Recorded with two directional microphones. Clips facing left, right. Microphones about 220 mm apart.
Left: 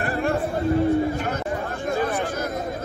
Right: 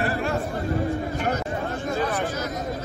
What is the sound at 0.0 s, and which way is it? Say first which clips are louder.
Chatter: left 1 dB; 50° left (ahead or behind).